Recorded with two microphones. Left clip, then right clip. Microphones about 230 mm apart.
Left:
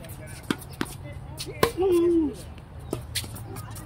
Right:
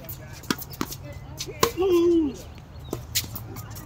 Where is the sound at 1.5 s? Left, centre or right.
Right.